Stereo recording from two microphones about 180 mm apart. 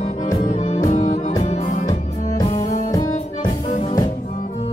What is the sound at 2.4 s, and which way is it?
Music, 20° left (ahead or behind).